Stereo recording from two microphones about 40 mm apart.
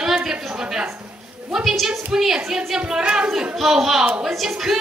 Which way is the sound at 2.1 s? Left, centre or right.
Centre.